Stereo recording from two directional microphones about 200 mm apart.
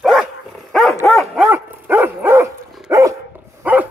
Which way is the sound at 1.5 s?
10° right (ahead or behind).